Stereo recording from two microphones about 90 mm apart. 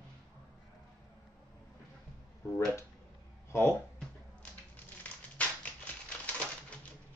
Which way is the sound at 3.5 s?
25° left (ahead or behind).